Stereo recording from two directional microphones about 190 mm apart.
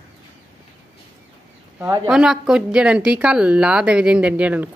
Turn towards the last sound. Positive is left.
turn(degrees=-10)  # may be behind; listen again after turning